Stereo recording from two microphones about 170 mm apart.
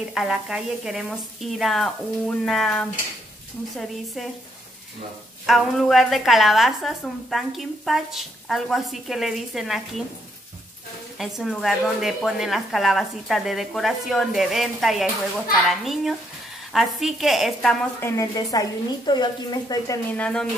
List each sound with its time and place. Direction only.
0.1 s a woman's voice: centre (ahead or behind)
5.5 s a woman's voice: centre (ahead or behind)
11.1 s a woman's voice: centre (ahead or behind)
18.0 s a woman's voice: 20° left (ahead or behind)
20.1 s speech: 5° left (ahead or behind)